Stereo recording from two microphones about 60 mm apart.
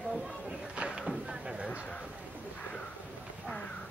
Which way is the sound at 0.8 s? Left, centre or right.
Centre.